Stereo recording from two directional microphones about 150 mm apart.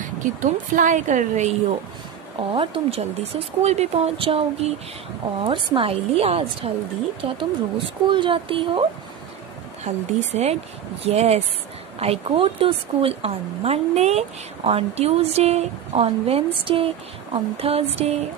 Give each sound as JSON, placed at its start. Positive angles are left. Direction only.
{"t": 0.2, "sound": "a woman's voice", "side_deg": -60}
{"t": 2.5, "sound": "speech", "side_deg": -35}
{"t": 9.8, "sound": "a woman's voice", "side_deg": -45}